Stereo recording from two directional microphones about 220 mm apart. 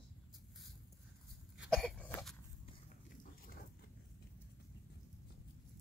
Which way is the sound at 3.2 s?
40° left (ahead or behind).